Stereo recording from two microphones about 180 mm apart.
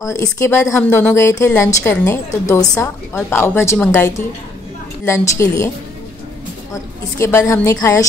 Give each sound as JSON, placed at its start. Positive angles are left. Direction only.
{"t": 0.0, "sound": "a woman's voice", "side_deg": 15}
{"t": 6.7, "sound": "a woman's voice", "side_deg": 15}